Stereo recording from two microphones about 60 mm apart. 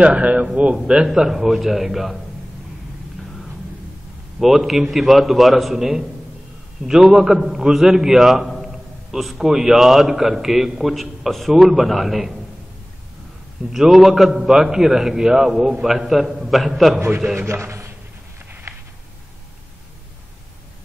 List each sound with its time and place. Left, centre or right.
0.0 s a man's voice: right; by 2.2 s centre
4.4 s a man's voice: centre
13.7 s a man's voice: centre
17.5 s a man's voice: right
18.5 s a sound: right